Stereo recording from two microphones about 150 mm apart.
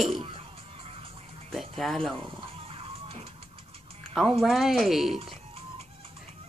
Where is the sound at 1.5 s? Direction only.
Centre (ahead or behind).